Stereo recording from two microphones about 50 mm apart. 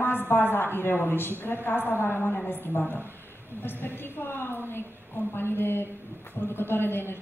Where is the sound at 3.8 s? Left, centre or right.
Left.